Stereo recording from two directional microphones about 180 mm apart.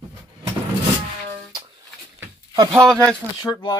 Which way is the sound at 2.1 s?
20° right (ahead or behind).